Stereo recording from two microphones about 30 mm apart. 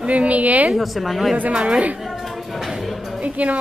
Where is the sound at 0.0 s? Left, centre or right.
Right.